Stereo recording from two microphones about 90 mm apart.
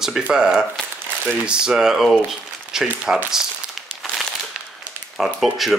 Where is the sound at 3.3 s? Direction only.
5° right (ahead or behind).